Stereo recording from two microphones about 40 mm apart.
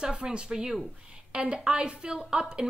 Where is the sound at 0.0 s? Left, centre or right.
Right.